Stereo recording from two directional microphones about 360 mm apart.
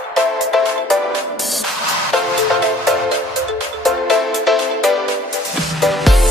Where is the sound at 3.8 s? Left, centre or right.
Centre.